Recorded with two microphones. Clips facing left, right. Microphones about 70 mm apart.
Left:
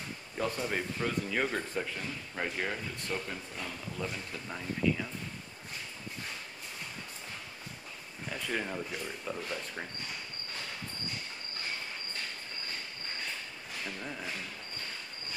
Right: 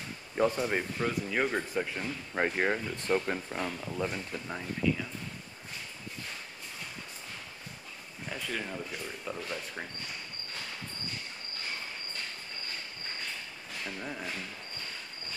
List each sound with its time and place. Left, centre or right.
0.4 s speech: centre
2.0 s speech: right
8.5 s speech: centre
13.8 s speech: centre